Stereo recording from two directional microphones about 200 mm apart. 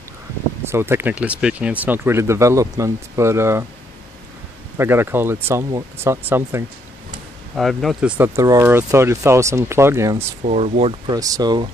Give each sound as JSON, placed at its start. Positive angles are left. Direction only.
{"t": 0.7, "sound": "speech", "side_deg": -10}
{"t": 4.7, "sound": "speech", "side_deg": -10}
{"t": 7.5, "sound": "speech", "side_deg": 0}
{"t": 10.4, "sound": "speech", "side_deg": -35}